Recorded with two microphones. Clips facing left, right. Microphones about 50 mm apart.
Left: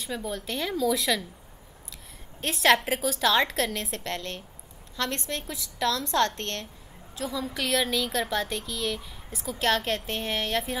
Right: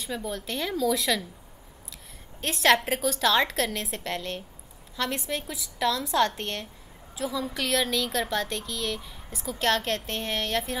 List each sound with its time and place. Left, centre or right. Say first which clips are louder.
0.0 s a woman's voice: even; centre
2.4 s a woman's voice: even; centre